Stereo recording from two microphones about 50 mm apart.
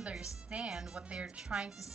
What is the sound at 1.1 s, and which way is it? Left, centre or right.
Speech, right.